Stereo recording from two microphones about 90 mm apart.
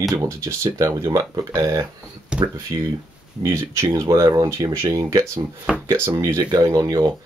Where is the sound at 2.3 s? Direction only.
10° right (ahead or behind).